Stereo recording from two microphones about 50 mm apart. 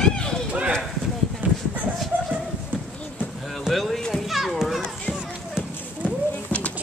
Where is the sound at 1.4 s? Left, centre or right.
Right.